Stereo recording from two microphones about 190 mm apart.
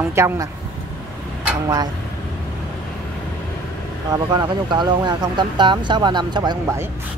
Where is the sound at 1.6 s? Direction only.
20° right (ahead or behind).